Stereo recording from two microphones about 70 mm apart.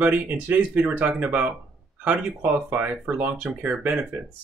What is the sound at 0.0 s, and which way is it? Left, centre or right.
Speech, right.